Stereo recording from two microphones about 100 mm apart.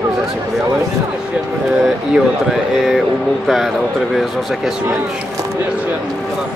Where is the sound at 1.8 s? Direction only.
Centre (ahead or behind).